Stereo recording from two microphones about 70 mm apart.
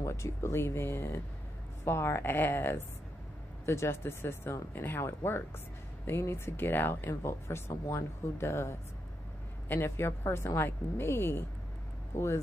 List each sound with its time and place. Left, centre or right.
0.0 s speech: left